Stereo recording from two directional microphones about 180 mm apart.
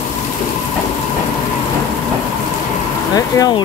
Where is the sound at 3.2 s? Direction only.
20° left (ahead or behind).